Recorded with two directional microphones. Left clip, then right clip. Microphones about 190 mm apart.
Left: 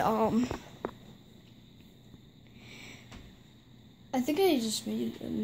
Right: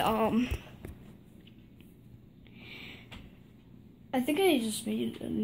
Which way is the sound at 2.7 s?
Centre (ahead or behind).